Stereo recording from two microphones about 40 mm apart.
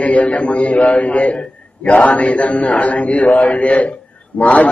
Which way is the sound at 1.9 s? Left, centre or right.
Left.